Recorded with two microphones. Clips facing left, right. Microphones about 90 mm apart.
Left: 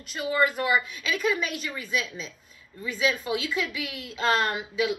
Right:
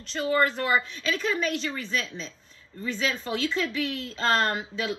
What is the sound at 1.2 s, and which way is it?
Speech, 35° right (ahead or behind).